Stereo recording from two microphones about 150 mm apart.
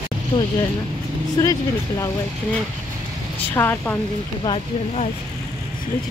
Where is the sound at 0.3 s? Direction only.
25° left (ahead or behind).